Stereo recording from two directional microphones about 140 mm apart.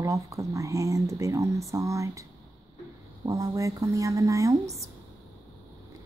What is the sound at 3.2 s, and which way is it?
Speech, 25° right (ahead or behind).